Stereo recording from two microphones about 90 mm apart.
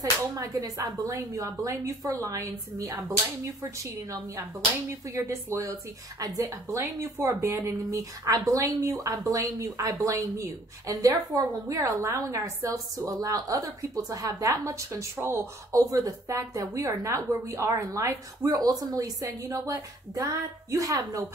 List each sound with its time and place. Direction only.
0.0 s speech: 35° right (ahead or behind)
5.1 s speech: 35° right (ahead or behind)
15.7 s speech: 40° right (ahead or behind)